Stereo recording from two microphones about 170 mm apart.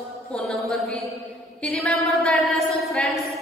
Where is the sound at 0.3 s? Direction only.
5° left (ahead or behind).